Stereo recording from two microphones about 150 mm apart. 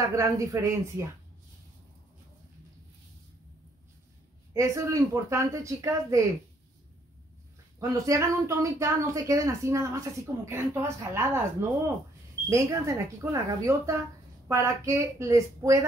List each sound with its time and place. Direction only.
0.1 s speech: 20° right (ahead or behind)
4.6 s speech: 20° right (ahead or behind)
7.9 s speech: 20° right (ahead or behind)
12.4 s speech: 20° right (ahead or behind)